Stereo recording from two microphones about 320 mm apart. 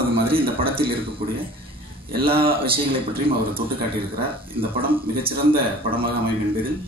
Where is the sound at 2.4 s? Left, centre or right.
Centre.